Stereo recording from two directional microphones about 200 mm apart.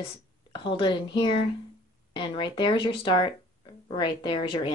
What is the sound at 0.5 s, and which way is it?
Speech, 25° left (ahead or behind).